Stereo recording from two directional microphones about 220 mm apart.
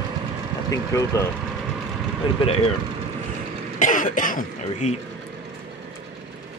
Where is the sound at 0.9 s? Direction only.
15° left (ahead or behind).